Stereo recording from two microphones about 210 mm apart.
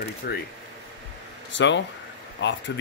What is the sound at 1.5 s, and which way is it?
Speech, 60° left (ahead or behind).